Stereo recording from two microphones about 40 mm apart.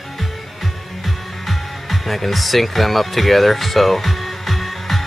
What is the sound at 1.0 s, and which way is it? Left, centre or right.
Speech, centre.